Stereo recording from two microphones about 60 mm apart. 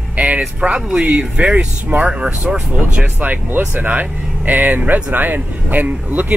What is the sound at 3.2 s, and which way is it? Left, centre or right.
Speech, right.